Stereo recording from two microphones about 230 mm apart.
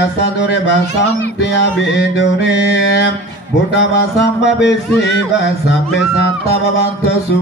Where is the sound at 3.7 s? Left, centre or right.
Left.